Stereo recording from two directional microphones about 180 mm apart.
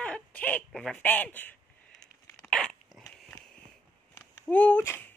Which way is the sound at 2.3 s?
5° left (ahead or behind).